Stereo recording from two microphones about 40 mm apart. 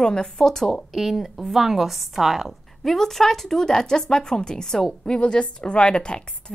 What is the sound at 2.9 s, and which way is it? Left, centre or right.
A woman's voice, centre.